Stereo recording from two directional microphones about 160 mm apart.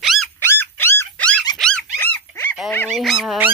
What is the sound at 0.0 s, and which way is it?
Dog, centre (ahead or behind).